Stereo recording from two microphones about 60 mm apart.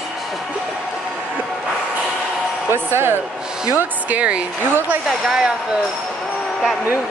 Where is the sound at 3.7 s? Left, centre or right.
Right.